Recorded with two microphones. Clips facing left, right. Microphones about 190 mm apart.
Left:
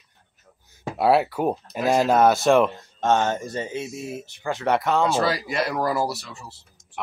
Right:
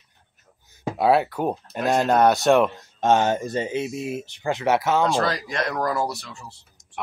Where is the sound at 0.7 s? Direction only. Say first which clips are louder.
Even; 5° left (ahead or behind).